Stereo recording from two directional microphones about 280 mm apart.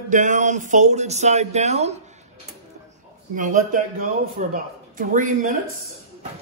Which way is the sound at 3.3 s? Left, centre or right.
Right.